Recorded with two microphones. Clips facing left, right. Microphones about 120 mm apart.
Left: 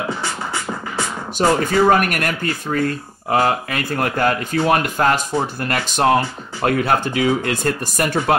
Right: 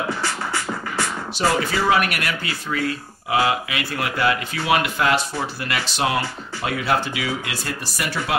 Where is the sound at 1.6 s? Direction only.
45° left (ahead or behind).